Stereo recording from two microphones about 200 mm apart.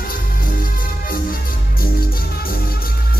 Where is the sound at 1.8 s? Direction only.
50° left (ahead or behind).